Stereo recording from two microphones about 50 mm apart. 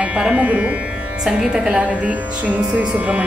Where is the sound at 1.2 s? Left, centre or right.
Centre.